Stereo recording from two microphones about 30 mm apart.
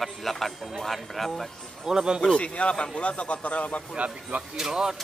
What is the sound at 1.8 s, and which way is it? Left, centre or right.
Speech, right.